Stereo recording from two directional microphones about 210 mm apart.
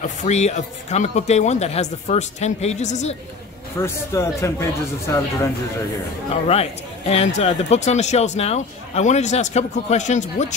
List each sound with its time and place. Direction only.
0.0 s speech: 35° left (ahead or behind)
3.8 s speech: 15° left (ahead or behind)
6.4 s speech: 30° left (ahead or behind)